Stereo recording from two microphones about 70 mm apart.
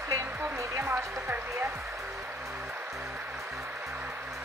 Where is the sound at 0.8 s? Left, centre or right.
Right.